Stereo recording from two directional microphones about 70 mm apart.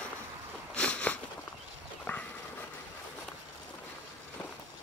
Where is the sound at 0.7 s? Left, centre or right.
Centre.